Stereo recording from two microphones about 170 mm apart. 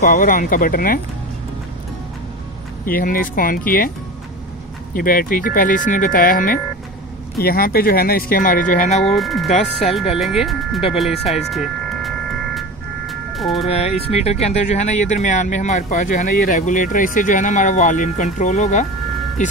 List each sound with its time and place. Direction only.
0.0 s speech: 50° left (ahead or behind)
2.8 s speech: 55° left (ahead or behind)
4.9 s speech: 55° left (ahead or behind)
9.0 s speech: centre (ahead or behind)
9.5 s speech: 40° left (ahead or behind)
10.1 s speech: centre (ahead or behind)
10.9 s music: centre (ahead or behind)
13.7 s speech: 40° left (ahead or behind)